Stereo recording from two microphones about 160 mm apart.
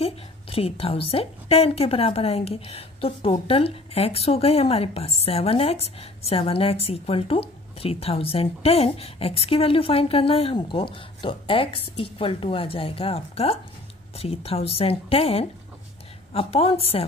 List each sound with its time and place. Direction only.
0.0 s a woman's voice: 35° left (ahead or behind)